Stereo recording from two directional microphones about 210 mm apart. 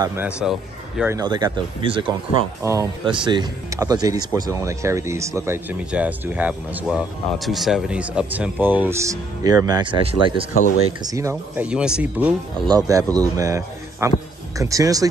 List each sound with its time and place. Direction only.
0.0 s speech: 10° right (ahead or behind)
1.1 s speech: 20° right (ahead or behind)
12.6 s speech: 15° right (ahead or behind)